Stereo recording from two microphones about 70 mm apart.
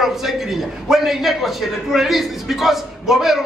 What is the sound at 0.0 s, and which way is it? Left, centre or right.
A man's voice, centre.